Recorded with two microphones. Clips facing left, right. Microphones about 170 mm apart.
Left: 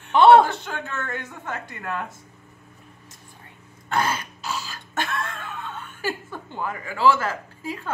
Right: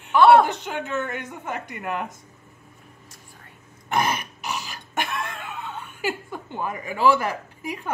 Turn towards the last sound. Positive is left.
turn(degrees=-15)  # may be behind; listen again after turning